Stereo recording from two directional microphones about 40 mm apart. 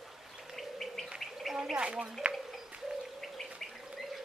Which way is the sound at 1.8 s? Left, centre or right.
Right.